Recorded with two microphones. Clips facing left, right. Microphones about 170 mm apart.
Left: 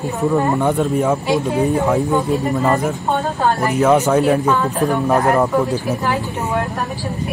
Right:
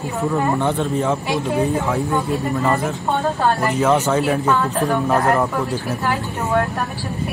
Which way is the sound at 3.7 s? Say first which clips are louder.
Left 6 dB; 10° left (ahead or behind).